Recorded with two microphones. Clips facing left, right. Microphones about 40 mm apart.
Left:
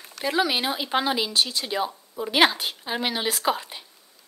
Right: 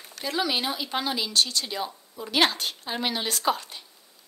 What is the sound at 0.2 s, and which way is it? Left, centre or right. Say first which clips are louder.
A woman's voice: left 3 dB; centre.